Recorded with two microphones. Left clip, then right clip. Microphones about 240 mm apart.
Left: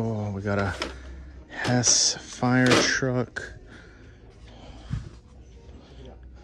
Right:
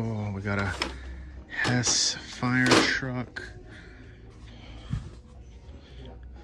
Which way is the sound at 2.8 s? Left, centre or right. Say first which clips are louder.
Left 3 dB; left.